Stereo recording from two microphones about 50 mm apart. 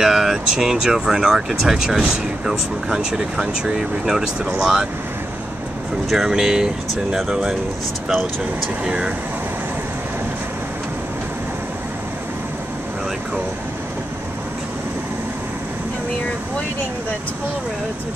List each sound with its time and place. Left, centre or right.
0.0 s speech: centre
6.0 s speech: centre
8.8 s speech: centre